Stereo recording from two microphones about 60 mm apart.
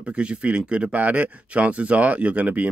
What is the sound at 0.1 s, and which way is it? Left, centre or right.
Speech, centre.